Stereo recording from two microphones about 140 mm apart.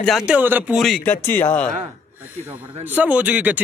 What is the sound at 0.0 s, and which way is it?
Speech, centre (ahead or behind).